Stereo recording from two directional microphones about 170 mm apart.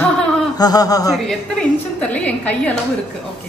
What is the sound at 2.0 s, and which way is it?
Speech, 10° left (ahead or behind).